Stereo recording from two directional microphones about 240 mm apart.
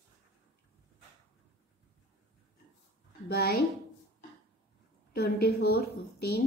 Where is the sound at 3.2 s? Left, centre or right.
Left.